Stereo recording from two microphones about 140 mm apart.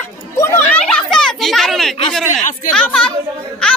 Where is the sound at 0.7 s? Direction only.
5° left (ahead or behind).